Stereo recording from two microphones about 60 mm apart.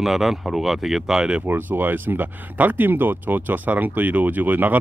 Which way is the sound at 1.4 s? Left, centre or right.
Right.